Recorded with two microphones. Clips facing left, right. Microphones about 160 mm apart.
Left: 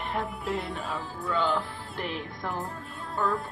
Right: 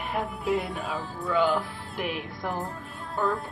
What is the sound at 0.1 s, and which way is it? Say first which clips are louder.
Speech: right 5 dB; centre (ahead or behind).